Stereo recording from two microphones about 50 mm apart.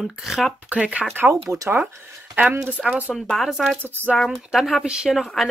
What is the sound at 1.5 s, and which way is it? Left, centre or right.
Speech, right.